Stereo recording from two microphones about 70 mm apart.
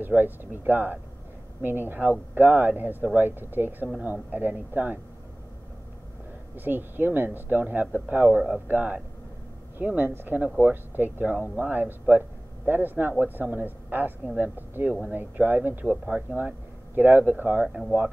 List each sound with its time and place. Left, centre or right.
0.0 s speech: right
6.5 s speech: right
14.9 s speech: centre
15.1 s speech: right